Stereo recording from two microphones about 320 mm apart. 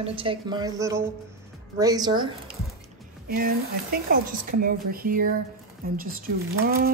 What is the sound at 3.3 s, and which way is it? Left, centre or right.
A woman's voice, right.